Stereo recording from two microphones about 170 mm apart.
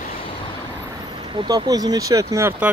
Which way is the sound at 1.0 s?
25° right (ahead or behind).